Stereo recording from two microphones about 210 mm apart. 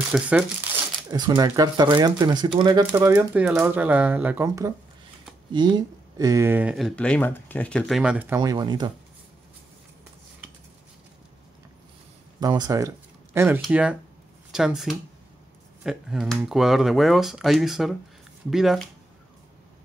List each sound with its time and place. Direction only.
0.1 s speech: 5° right (ahead or behind)
1.1 s speech: 20° right (ahead or behind)
7.0 s speech: 5° left (ahead or behind)
8.4 s speech: 20° right (ahead or behind)
12.4 s speech: 20° right (ahead or behind); by 18.9 s centre (ahead or behind)